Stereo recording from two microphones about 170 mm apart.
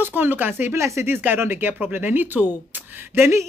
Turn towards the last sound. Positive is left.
turn(degrees=-15)  # may be behind; listen again after turning